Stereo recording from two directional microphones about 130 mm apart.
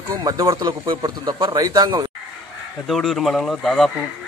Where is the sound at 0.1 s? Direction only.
30° right (ahead or behind).